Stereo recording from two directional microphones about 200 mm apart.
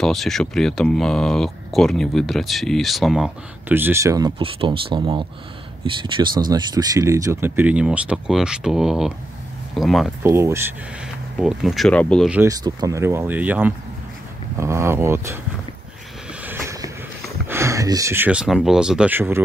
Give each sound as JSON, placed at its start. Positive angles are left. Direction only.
{"t": 0.0, "sound": "speech", "side_deg": 0}
{"t": 4.4, "sound": "speech", "side_deg": -25}
{"t": 10.2, "sound": "speech", "side_deg": -15}
{"t": 11.3, "sound": "speech", "side_deg": 0}
{"t": 12.3, "sound": "speech", "side_deg": -10}
{"t": 16.4, "sound": "train", "side_deg": -15}
{"t": 17.5, "sound": "speech", "side_deg": -15}